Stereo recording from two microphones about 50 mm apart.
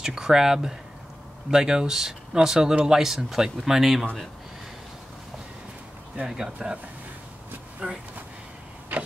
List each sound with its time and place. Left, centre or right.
0.0 s speech: centre
6.2 s speech: centre
7.8 s speech: centre
8.9 s a sound: right